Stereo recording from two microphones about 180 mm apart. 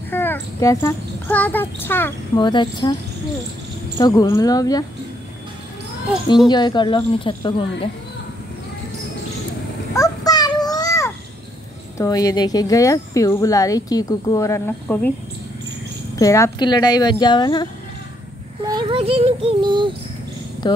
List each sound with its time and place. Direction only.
0.1 s a child's voice: 10° left (ahead or behind)
2.3 s speech: 25° left (ahead or behind)
4.0 s speech: 20° left (ahead or behind)
6.5 s speech: 25° left (ahead or behind)
9.9 s a sound: 20° left (ahead or behind)
12.0 s speech: 20° left (ahead or behind)
16.2 s speech: 15° left (ahead or behind)
18.7 s child singing: 25° right (ahead or behind)
20.6 s speech: 25° left (ahead or behind)